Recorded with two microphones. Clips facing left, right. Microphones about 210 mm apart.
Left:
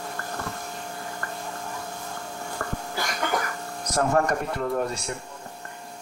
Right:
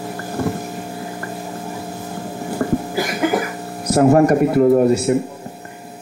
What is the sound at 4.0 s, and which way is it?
Speech, 20° right (ahead or behind).